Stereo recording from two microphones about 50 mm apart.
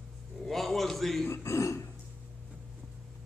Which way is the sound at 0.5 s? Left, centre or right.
Centre.